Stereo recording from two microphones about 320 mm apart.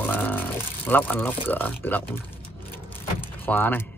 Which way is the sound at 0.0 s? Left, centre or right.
Centre.